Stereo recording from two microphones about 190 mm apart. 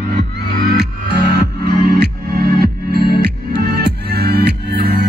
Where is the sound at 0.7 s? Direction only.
60° right (ahead or behind).